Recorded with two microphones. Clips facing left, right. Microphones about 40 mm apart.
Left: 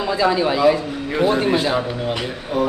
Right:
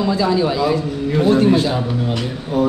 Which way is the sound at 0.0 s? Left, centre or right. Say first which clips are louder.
Right 1 dB; centre.